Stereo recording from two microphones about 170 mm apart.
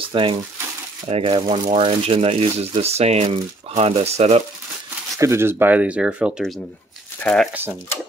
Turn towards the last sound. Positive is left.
turn(degrees=-10)  # may be behind; listen again after turning